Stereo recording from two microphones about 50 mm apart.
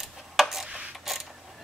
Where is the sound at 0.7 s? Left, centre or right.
Centre.